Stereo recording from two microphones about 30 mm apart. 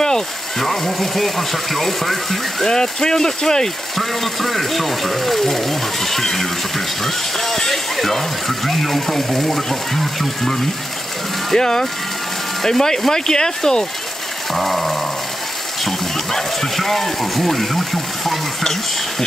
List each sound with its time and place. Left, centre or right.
0.6 s speech: centre
2.6 s speech: centre
4.0 s speech: centre
7.3 s a sound: centre
8.0 s speech: centre
11.5 s speech: left
14.5 s speech: centre
16.3 s speech: centre